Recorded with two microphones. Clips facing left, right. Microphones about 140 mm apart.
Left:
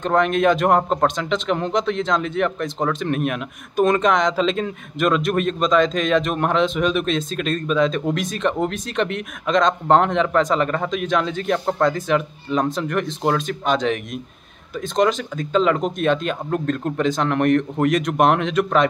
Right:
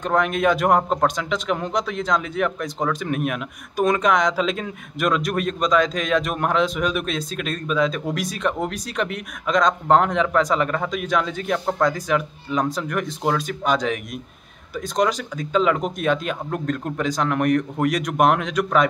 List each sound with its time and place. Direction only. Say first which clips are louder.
0.0 s speech: left 3 dB; 5° right (ahead or behind)
14.8 s speech: left 2 dB; 10° right (ahead or behind)